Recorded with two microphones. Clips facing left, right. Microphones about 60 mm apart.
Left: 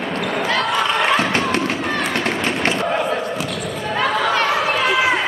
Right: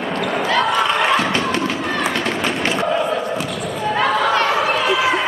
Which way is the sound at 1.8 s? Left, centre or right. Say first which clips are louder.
Right 1 dB; centre.